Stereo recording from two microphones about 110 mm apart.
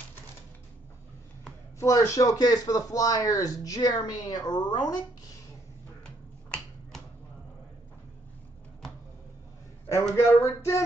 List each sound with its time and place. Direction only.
1.8 s speech: 30° left (ahead or behind)
10.1 s speech: 25° left (ahead or behind)